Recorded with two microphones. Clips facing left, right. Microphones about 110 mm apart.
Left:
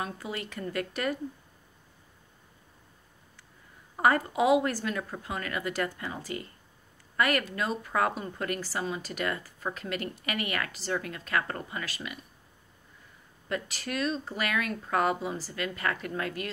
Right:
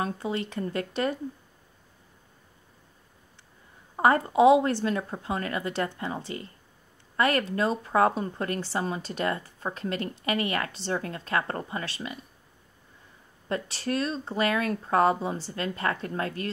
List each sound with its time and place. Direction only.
0.0 s speech: 30° right (ahead or behind)
3.9 s speech: 30° right (ahead or behind)
13.5 s speech: 30° right (ahead or behind)